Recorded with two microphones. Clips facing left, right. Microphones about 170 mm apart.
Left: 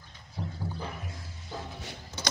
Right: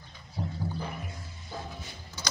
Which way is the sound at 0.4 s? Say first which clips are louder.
Right 2 dB; 15° right (ahead or behind).